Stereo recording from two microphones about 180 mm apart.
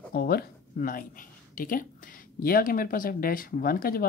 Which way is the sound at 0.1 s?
60° left (ahead or behind).